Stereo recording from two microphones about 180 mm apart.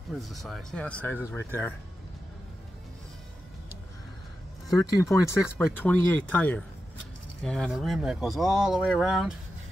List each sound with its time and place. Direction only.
0.1 s speech: centre (ahead or behind)
4.6 s speech: 20° left (ahead or behind); by 9.3 s 5° right (ahead or behind)